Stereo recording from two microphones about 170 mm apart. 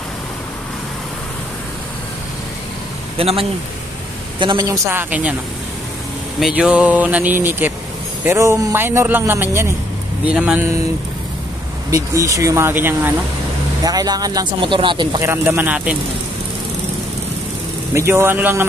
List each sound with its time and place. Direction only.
3.2 s a man's voice: 35° right (ahead or behind); by 5.3 s 10° right (ahead or behind)
6.4 s a man's voice: 5° right (ahead or behind)
11.9 s a man's voice: 20° right (ahead or behind)
15.2 s a man's voice: 15° right (ahead or behind)
17.9 s a man's voice: 15° right (ahead or behind)